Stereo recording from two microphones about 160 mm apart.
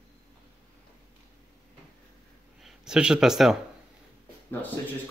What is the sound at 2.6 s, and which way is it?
Speech, 5° right (ahead or behind).